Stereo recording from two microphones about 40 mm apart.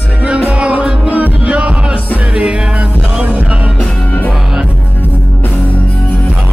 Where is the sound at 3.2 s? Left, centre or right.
Right.